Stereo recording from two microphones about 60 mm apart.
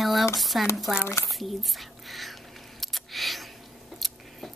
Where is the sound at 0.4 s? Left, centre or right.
Centre.